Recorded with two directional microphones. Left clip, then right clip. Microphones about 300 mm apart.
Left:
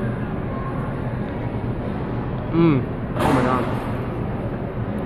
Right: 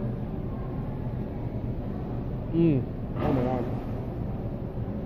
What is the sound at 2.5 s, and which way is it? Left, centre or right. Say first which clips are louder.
Speech: left 6 dB; centre.